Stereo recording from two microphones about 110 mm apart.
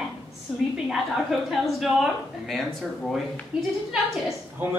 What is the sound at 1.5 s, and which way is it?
Speech, centre (ahead or behind).